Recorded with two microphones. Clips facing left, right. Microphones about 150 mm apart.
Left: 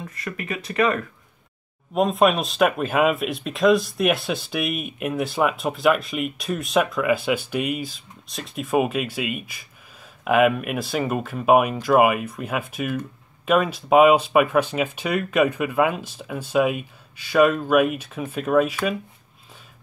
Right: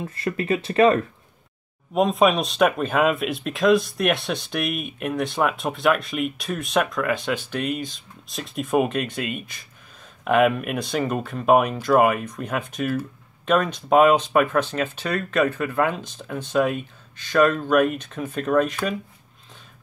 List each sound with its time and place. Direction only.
0.0 s speech: 30° right (ahead or behind)
2.0 s speech: centre (ahead or behind)